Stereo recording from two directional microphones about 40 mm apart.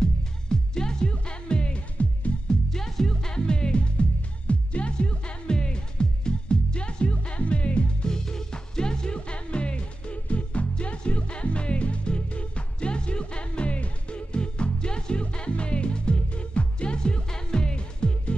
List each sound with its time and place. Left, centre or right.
0.0 s music: centre
2.7 s music: centre; by 8.1 s left
8.1 s music: centre